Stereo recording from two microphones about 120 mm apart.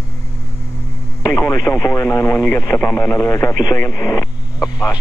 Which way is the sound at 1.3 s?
25° left (ahead or behind).